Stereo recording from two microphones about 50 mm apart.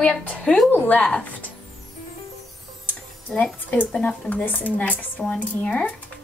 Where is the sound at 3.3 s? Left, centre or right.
Left.